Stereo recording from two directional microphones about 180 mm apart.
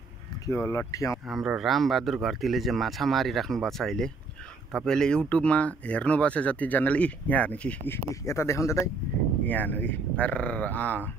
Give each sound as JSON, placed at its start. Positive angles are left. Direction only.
{"t": 0.5, "sound": "speech", "side_deg": 15}
{"t": 1.2, "sound": "speech", "side_deg": -5}